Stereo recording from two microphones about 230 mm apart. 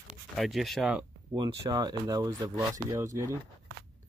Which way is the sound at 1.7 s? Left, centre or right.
Centre.